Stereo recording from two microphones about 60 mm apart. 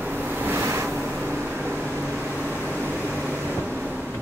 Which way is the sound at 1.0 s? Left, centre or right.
Right.